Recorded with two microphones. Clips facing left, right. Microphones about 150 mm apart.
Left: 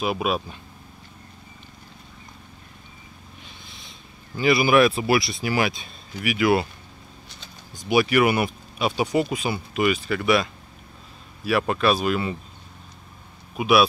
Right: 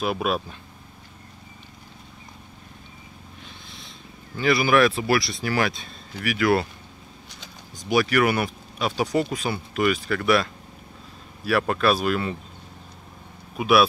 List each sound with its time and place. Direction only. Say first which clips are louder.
0.0 s speech: even; 5° left (ahead or behind)
4.4 s speech: left 2 dB; 15° left (ahead or behind)
7.9 s speech: left 2 dB; 15° left (ahead or behind)
13.6 s speech: even; centre (ahead or behind)